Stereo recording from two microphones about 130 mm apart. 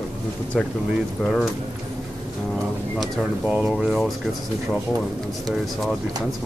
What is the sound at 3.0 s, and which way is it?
Speech, centre (ahead or behind).